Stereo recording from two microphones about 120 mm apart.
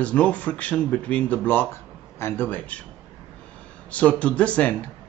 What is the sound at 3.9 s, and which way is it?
Speech, 10° left (ahead or behind).